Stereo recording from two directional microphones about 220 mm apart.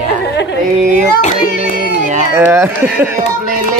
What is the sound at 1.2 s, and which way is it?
Child singing, 35° left (ahead or behind).